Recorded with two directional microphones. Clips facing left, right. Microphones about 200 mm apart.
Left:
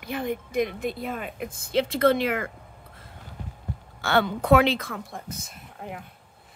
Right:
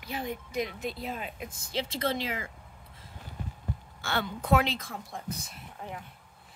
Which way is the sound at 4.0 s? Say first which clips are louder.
Left 10 dB; 70° left (ahead or behind).